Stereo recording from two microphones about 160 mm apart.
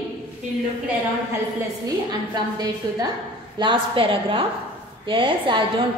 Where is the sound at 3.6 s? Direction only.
30° right (ahead or behind).